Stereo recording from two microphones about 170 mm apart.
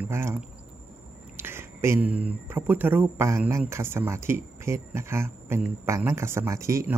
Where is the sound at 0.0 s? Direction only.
15° right (ahead or behind).